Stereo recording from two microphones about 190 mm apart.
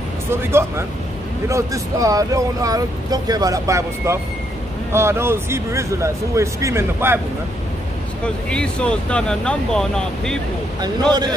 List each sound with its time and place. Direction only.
0.3 s speech: 10° right (ahead or behind)
8.5 s speech: 5° left (ahead or behind)
10.8 s speech: 20° right (ahead or behind)